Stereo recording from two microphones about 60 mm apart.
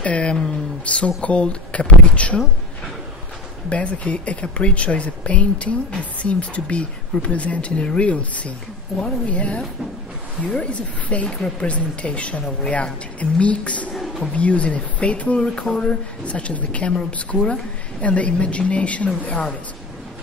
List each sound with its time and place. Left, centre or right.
0.0 s speech: centre
3.7 s speech: left
13.9 s a sound: centre
14.3 s speech: left